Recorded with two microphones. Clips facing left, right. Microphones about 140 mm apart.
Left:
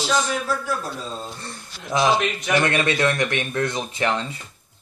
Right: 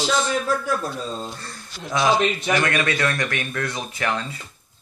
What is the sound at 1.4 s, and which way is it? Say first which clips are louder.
Speech: right 1 dB; 20° left (ahead or behind).